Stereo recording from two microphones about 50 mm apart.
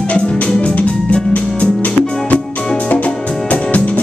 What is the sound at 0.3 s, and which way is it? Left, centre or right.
Music, centre.